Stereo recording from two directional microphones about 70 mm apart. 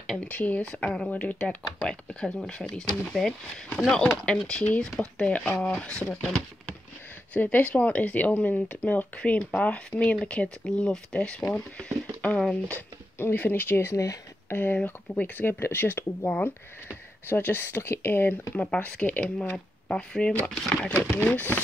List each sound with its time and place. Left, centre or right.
0.2 s speech: left
5.5 s speech: left
6.0 s speech: centre
13.2 s speech: left
14.5 s speech: left
15.4 s speech: left
18.7 s speech: centre